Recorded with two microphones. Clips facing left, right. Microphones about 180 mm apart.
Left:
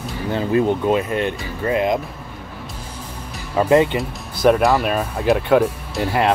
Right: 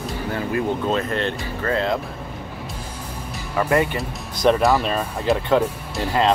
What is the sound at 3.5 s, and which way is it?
Speech, 25° left (ahead or behind).